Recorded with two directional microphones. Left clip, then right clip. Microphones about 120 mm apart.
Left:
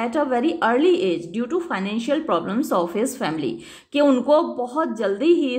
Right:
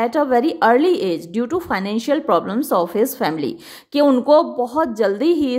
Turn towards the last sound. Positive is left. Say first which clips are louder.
# right 2 dB
turn(degrees=-45)  # may be behind; listen again after turning